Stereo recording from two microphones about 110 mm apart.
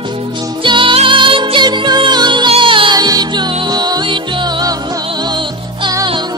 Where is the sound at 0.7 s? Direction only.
50° right (ahead or behind).